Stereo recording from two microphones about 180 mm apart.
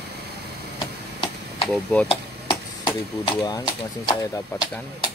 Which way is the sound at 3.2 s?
20° left (ahead or behind).